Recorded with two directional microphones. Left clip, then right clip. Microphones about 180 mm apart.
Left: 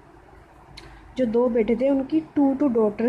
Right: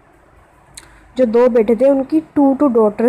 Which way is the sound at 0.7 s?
20° right (ahead or behind).